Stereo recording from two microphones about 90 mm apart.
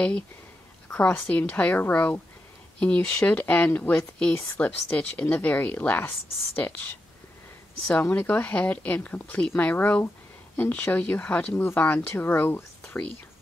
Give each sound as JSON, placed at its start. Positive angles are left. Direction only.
{"t": 0.9, "sound": "speech", "side_deg": 15}
{"t": 7.9, "sound": "speech", "side_deg": 15}